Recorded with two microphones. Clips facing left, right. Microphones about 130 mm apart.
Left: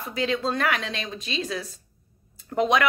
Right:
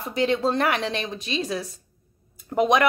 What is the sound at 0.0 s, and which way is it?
A woman's voice, 30° right (ahead or behind).